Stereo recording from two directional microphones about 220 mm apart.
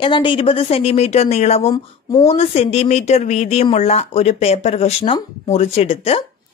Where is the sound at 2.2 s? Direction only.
30° left (ahead or behind).